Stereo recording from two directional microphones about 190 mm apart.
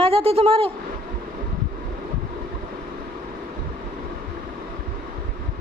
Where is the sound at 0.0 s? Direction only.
30° right (ahead or behind).